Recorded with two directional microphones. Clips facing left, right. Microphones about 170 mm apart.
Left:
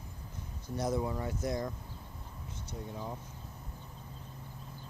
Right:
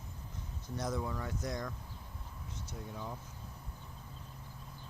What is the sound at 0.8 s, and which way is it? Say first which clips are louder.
Speech: left 5 dB; 25° left (ahead or behind).